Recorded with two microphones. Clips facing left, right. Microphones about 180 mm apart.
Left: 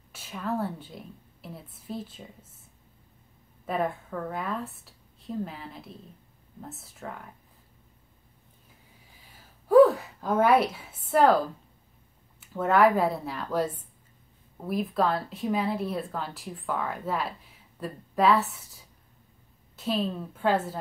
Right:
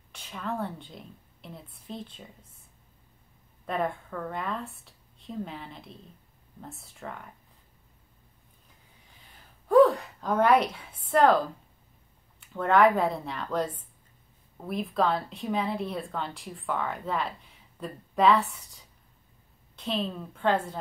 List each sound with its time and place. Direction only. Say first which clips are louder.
0.1 s a woman's voice: left 3 dB; 5° left (ahead or behind)
3.6 s speech: left 1 dB; 5° left (ahead or behind)
9.2 s a sound: right 1 dB; 5° left (ahead or behind)
12.4 s speech: even; 5° left (ahead or behind)